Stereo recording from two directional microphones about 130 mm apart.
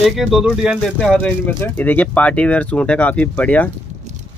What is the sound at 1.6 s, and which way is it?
Speech, 15° left (ahead or behind).